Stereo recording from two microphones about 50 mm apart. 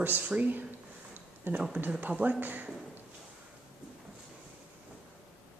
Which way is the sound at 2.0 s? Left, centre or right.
Right.